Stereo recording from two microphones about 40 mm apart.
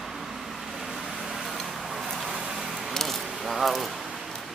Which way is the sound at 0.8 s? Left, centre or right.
Centre.